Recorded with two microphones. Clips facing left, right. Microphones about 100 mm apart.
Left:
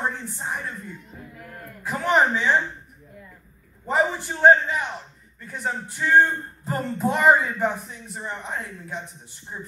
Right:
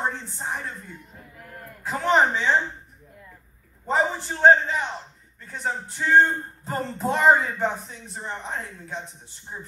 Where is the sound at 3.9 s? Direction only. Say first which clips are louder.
Left 1 dB; 25° right (ahead or behind).